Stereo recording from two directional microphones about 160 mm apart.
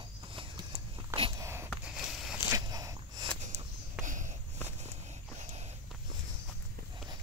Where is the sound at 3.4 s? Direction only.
50° right (ahead or behind).